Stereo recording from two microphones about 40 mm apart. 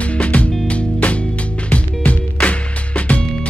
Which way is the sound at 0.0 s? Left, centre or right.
Left.